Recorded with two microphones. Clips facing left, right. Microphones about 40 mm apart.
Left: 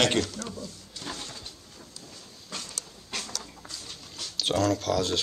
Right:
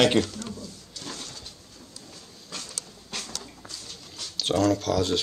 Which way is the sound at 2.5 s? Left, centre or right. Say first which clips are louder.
Even; centre.